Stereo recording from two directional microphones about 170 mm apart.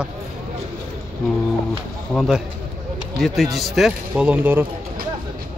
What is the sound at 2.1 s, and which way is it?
Speech, centre (ahead or behind).